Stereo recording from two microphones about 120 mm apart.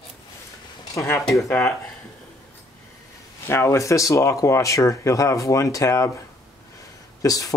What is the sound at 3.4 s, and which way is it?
Speech, 20° left (ahead or behind).